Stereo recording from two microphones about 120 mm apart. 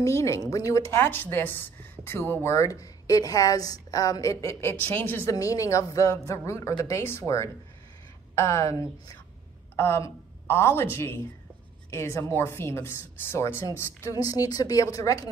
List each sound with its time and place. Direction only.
0.0 s a woman's voice: 25° left (ahead or behind)
5.3 s a woman's voice: 25° left (ahead or behind)